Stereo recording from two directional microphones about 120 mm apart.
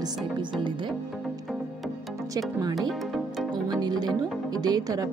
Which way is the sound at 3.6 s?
35° right (ahead or behind).